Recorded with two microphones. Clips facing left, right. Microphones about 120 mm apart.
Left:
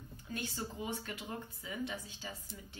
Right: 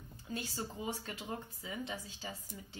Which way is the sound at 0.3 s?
30° right (ahead or behind).